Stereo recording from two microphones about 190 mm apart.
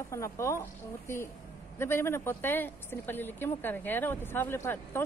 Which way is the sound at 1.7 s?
15° left (ahead or behind).